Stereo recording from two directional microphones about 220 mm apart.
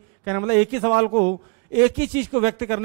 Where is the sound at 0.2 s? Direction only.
15° right (ahead or behind).